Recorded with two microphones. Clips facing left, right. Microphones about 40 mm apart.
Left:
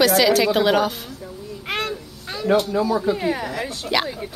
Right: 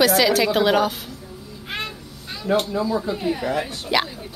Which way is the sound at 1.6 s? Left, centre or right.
Left.